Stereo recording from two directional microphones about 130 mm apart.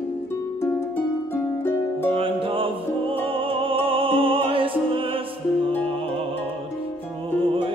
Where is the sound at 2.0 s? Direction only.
45° right (ahead or behind).